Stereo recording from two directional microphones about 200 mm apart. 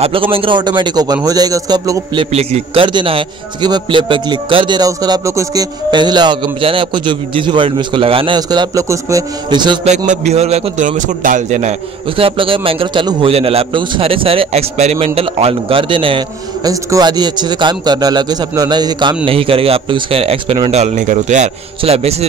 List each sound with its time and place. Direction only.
0.0 s a man's voice: 25° right (ahead or behind)
2.3 s a man's voice: 30° right (ahead or behind)
9.8 s a man's voice: 35° right (ahead or behind)
20.8 s a man's voice: 40° right (ahead or behind)